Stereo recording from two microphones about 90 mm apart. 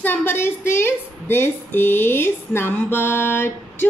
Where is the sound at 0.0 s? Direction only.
20° left (ahead or behind).